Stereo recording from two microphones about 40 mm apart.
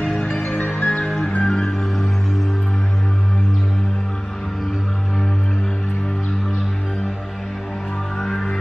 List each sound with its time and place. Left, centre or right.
0.2 s music: left
1.4 s music: centre
8.2 s music: centre